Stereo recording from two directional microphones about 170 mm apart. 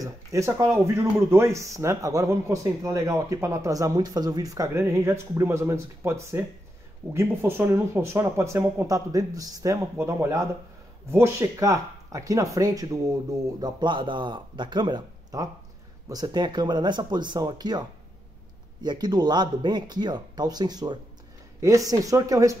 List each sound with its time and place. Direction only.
0.0 s speech: 15° right (ahead or behind)